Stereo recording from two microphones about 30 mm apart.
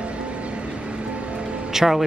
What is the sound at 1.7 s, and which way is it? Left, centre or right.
Speech, centre.